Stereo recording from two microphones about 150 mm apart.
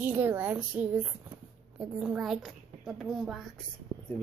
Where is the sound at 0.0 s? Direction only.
10° right (ahead or behind).